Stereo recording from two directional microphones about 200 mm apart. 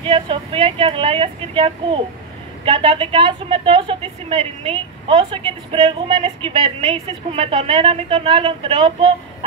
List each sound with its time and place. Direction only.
0.0 s a woman's voice: 25° right (ahead or behind)